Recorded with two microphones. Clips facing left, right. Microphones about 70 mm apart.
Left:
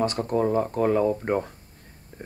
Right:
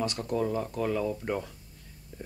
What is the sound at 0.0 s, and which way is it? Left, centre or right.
Speech, left.